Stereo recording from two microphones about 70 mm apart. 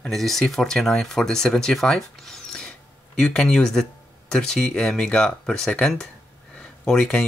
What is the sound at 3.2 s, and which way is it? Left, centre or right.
Speech, centre.